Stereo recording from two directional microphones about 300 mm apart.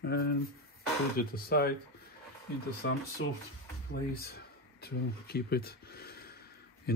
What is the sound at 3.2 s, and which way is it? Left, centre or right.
Speech, left.